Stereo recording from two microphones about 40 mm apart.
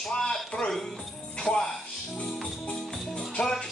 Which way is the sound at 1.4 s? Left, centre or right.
Left.